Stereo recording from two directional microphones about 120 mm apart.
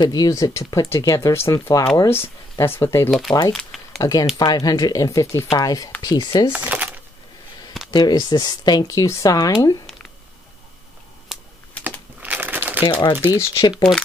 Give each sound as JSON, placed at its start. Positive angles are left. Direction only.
{"t": 0.0, "sound": "speech", "side_deg": 30}
{"t": 3.1, "sound": "speech", "side_deg": 0}
{"t": 3.5, "sound": "a sound", "side_deg": 0}
{"t": 4.0, "sound": "speech", "side_deg": 30}
{"t": 6.0, "sound": "speech", "side_deg": 40}
{"t": 6.5, "sound": "a sound", "side_deg": -10}
{"t": 7.9, "sound": "speech", "side_deg": 35}
{"t": 11.3, "sound": "computer keyboard", "side_deg": 0}
{"t": 11.8, "sound": "crumpling", "side_deg": -15}
{"t": 12.8, "sound": "speech", "side_deg": 40}